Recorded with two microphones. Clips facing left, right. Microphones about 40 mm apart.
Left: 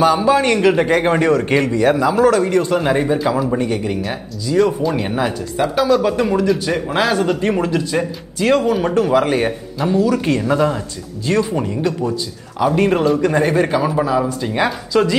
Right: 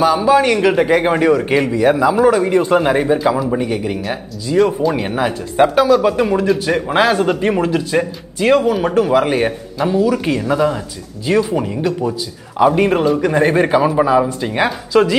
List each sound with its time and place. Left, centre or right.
0.0 s a man's voice: centre
3.2 s a man's voice: centre
13.2 s a man's voice: centre